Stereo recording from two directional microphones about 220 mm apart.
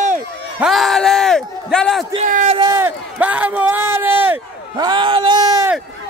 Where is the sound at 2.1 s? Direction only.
35° right (ahead or behind).